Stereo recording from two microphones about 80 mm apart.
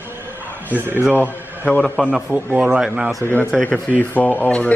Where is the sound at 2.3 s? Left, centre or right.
Right.